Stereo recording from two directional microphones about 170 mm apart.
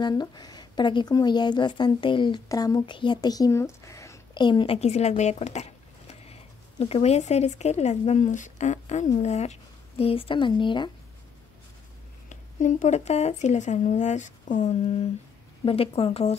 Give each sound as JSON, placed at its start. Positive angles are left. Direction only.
{"t": 0.0, "sound": "speech", "side_deg": 25}
{"t": 12.3, "sound": "speech", "side_deg": 45}